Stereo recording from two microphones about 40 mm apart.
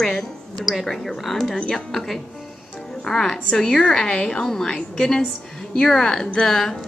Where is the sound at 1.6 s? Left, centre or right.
Left.